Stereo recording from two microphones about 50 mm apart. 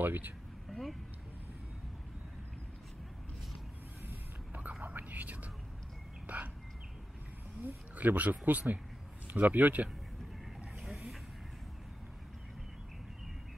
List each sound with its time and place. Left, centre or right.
0.0 s speech: right
0.7 s vehicle: centre
4.1 s a sound: right
4.8 s whispering: right
6.2 s bird: right
7.6 s speech: right